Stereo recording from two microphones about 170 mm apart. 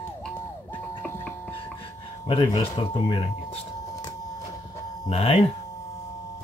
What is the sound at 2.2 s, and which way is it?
Speech, 25° left (ahead or behind).